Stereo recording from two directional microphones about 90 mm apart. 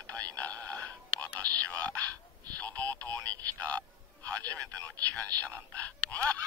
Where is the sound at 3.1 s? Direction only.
40° right (ahead or behind).